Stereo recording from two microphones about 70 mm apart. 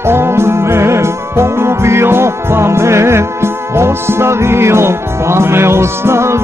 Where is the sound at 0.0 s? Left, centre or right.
Right.